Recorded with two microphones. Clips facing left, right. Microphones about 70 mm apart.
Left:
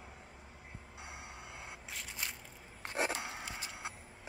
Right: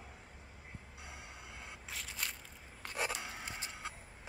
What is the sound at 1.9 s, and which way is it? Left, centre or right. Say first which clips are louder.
Crushing: right 1 dB; centre.